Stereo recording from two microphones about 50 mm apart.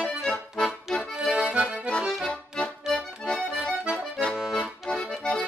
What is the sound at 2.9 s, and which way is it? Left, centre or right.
Accordion, left.